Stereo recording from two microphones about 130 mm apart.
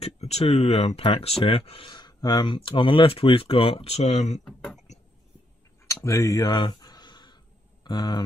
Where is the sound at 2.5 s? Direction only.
40° left (ahead or behind); by 4.4 s 60° left (ahead or behind).